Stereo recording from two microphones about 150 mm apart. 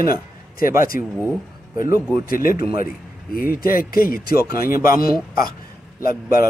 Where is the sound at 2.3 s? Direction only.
70° left (ahead or behind).